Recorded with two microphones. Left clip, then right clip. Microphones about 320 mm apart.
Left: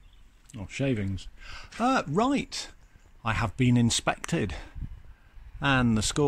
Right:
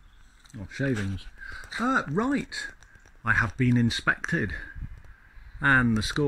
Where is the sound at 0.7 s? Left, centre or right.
Centre.